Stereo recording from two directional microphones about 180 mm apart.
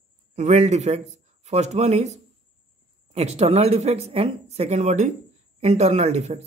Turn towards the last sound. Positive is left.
turn(degrees=-35)  # may be behind; listen again after turning